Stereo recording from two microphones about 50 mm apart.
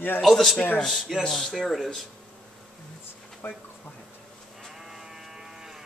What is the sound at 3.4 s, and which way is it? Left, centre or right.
Speech, left.